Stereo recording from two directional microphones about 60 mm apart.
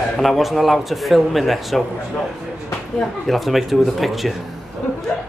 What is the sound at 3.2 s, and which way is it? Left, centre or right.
Speech, centre.